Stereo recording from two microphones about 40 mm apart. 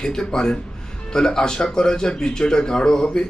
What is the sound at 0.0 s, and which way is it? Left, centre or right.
A man's voice, centre.